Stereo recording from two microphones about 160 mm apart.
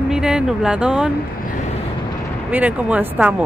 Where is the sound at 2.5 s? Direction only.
10° right (ahead or behind).